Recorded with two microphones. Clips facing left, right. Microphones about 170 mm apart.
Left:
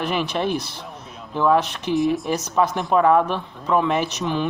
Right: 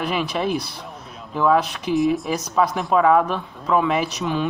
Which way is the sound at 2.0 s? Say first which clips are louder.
Right 1 dB; centre (ahead or behind).